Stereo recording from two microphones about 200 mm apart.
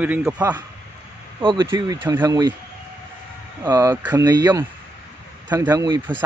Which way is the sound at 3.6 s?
15° right (ahead or behind).